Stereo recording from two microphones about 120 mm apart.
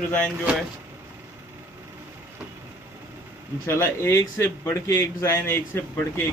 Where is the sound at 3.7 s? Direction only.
20° left (ahead or behind).